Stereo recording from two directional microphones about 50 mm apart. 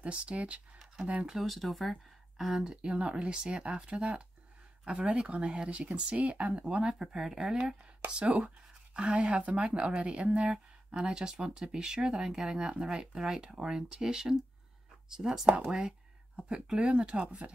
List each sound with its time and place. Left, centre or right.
0.0 s speech: right
1.2 s speech: centre
2.6 s speech: centre
8.1 s speech: right